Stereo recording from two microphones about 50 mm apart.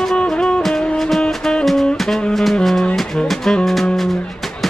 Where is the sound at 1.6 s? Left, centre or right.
Centre.